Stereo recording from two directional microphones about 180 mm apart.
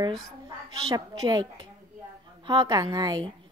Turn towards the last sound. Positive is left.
turn(degrees=-20)  # may be behind; listen again after turning